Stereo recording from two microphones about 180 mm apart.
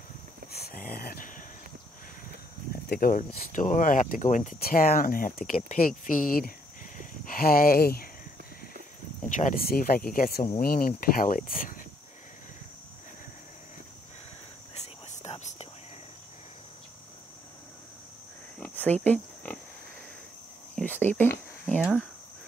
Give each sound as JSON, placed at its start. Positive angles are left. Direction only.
{"t": 0.5, "sound": "a sound", "side_deg": 60}
{"t": 2.7, "sound": "speech", "side_deg": 55}
{"t": 9.3, "sound": "speech", "side_deg": 45}
{"t": 14.7, "sound": "whispering", "side_deg": 35}
{"t": 18.6, "sound": "cricket", "side_deg": 10}
{"t": 19.0, "sound": "speech", "side_deg": 5}
{"t": 20.7, "sound": "cricket", "side_deg": 10}